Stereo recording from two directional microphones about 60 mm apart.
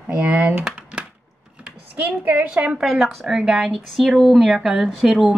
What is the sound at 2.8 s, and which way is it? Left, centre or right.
Speech, centre.